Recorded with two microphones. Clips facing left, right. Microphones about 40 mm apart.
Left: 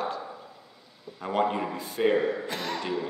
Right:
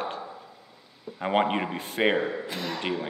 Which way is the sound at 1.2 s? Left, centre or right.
Right.